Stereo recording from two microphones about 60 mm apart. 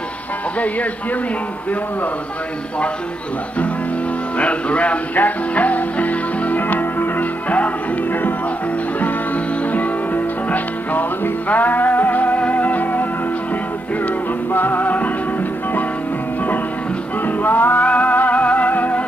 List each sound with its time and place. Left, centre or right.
4.4 s music: left
9.7 s music: left
14.5 s music: left
17.4 s music: left